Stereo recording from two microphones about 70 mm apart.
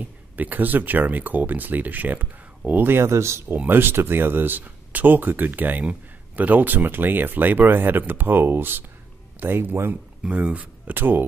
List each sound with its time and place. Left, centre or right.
0.0 s speech: right
3.5 s speech: right
10.2 s speech: centre